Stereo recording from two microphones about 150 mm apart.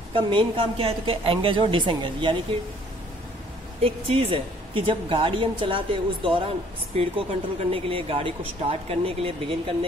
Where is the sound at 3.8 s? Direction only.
40° right (ahead or behind).